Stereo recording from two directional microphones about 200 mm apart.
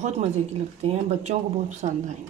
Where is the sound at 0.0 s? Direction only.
35° right (ahead or behind).